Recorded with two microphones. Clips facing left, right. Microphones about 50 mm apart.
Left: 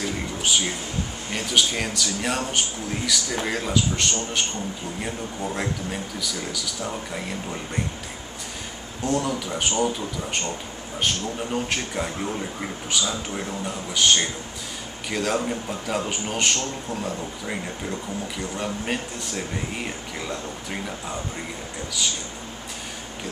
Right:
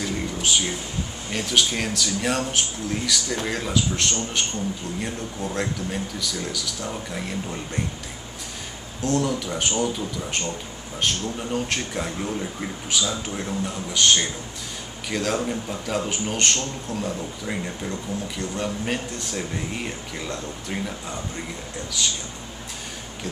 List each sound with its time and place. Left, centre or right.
0.0 s a sound: centre
1.3 s a man's voice: centre
9.0 s a man's voice: centre
11.5 s a man's voice: centre
22.0 s a man's voice: centre